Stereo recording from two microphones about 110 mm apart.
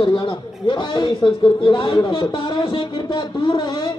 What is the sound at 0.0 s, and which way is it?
A man's voice, 50° left (ahead or behind).